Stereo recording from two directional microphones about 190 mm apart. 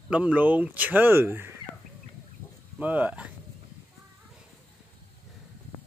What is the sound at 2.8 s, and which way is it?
Speech, 10° right (ahead or behind).